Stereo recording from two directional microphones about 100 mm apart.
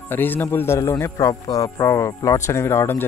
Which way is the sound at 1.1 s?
35° left (ahead or behind).